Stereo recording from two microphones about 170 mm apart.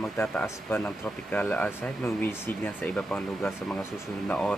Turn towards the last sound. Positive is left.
turn(degrees=5)  # may be behind; listen again after turning